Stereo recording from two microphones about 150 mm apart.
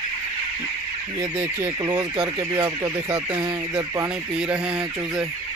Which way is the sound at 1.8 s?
25° right (ahead or behind).